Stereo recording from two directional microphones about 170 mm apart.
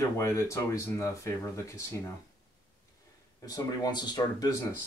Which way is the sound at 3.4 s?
25° left (ahead or behind).